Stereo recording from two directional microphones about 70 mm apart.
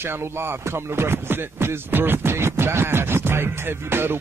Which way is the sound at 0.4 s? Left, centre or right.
Right.